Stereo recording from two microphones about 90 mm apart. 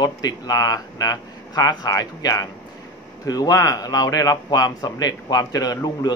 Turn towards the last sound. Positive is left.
turn(degrees=50)  # may be behind; listen again after turning